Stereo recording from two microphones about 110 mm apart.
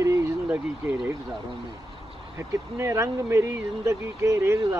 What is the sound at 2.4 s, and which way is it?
Speech, 25° right (ahead or behind).